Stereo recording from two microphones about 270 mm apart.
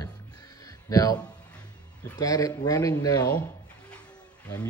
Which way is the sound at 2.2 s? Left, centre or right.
Centre.